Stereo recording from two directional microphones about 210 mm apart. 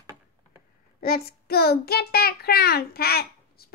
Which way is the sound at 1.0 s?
45° left (ahead or behind).